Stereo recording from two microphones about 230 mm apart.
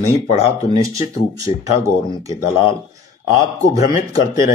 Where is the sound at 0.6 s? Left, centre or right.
Centre.